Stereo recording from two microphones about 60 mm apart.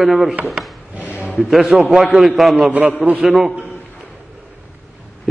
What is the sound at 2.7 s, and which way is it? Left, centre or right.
Speech, right.